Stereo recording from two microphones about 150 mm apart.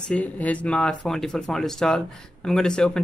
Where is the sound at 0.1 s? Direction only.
10° left (ahead or behind).